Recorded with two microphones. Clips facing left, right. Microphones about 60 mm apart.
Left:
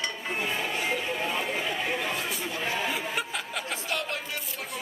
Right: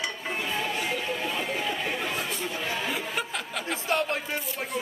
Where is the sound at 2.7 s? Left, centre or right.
Centre.